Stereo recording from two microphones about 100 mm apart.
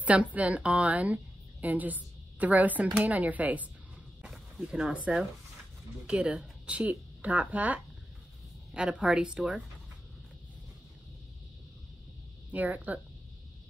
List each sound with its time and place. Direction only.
0.0 s a woman's voice: 15° right (ahead or behind)
12.4 s speech: 15° right (ahead or behind)